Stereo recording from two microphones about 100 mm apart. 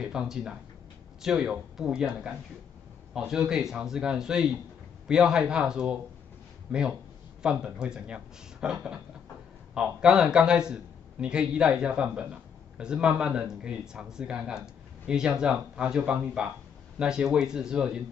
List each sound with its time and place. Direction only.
0.0 s a man's voice: 5° right (ahead or behind)